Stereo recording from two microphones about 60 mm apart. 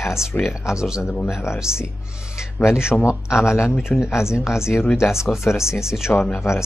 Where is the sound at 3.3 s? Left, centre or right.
Left.